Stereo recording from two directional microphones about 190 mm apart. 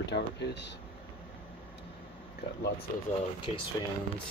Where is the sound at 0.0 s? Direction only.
65° left (ahead or behind).